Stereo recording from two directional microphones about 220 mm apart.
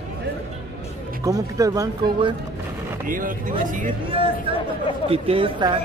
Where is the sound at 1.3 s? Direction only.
15° right (ahead or behind).